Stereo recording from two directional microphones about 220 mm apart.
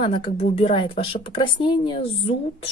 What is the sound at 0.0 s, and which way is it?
Speech, 25° left (ahead or behind).